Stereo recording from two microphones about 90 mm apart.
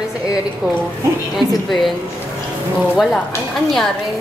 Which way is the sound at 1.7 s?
Centre (ahead or behind).